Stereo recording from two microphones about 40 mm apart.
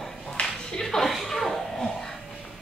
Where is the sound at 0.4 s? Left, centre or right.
Centre.